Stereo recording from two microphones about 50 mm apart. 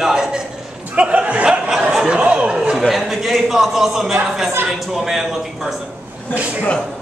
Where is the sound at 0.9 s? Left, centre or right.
Right.